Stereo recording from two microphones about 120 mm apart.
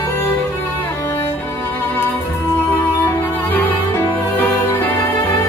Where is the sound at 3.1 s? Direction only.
20° left (ahead or behind).